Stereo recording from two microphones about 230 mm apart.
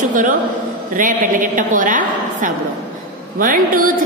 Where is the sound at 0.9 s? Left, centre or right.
Right.